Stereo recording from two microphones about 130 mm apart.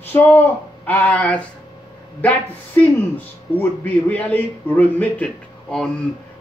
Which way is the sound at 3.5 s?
15° left (ahead or behind).